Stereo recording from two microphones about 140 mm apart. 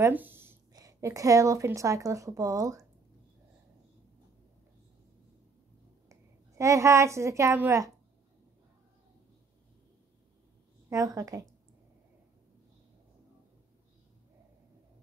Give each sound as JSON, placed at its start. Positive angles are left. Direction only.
{"t": 0.0, "sound": "a woman's voice", "side_deg": -15}
{"t": 6.0, "sound": "a woman's voice", "side_deg": -20}
{"t": 10.9, "sound": "a woman's voice", "side_deg": -25}